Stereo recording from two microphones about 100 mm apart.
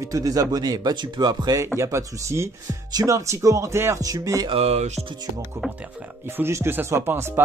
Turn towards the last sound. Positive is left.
turn(degrees=-25)  # may be behind; listen again after turning